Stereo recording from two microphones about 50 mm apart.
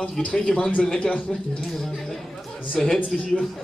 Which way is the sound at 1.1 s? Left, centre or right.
Left.